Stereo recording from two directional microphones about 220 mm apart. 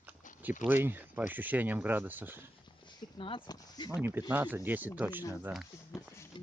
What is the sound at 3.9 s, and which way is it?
Speech, 10° right (ahead or behind).